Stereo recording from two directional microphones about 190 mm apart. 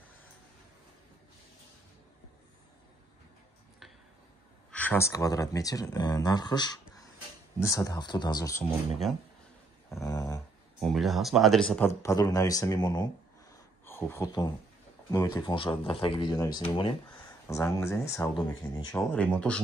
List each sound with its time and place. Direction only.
4.6 s speech: 10° left (ahead or behind)
10.0 s a sound: 20° left (ahead or behind)
10.8 s speech: centre (ahead or behind)
12.0 s speech: 20° left (ahead or behind)
17.5 s speech: 15° left (ahead or behind)
19.1 s speech: 5° left (ahead or behind)